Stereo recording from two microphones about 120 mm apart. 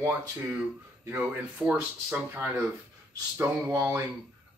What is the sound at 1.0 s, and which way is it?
Speech, 15° right (ahead or behind).